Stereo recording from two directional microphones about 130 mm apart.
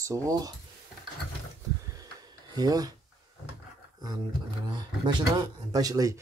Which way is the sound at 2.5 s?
30° right (ahead or behind).